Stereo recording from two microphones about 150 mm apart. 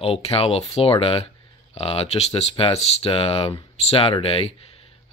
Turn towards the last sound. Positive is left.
turn(degrees=40)  # may be behind; listen again after turning